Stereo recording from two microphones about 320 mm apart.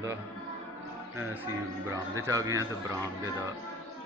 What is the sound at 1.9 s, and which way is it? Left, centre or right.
Speech, centre.